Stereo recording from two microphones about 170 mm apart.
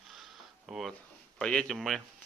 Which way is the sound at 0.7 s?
5° right (ahead or behind).